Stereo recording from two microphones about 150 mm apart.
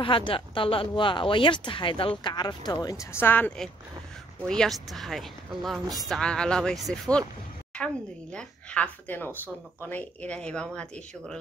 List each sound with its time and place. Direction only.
0.0 s a woman's voice: 35° left (ahead or behind); by 11.3 s 5° left (ahead or behind)